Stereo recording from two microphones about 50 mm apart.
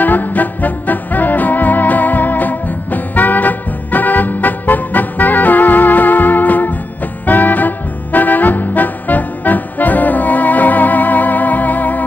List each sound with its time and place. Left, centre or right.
0.0 s music: left